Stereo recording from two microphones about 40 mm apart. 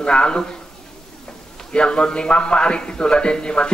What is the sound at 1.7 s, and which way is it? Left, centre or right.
Speech, left.